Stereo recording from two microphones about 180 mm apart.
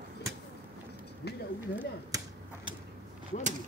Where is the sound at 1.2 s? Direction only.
65° left (ahead or behind).